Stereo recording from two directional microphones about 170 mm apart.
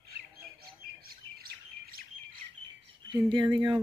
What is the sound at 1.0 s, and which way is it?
Bird, 60° right (ahead or behind).